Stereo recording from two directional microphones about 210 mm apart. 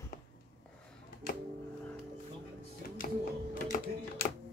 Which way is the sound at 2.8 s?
40° left (ahead or behind).